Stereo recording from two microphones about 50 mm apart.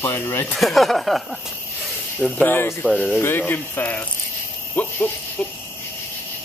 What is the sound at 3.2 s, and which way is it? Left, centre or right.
Speech, left.